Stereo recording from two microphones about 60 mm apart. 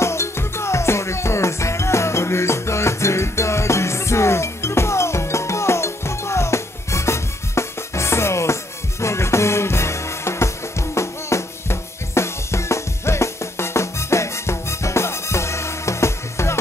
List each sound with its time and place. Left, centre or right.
0.0 s music: left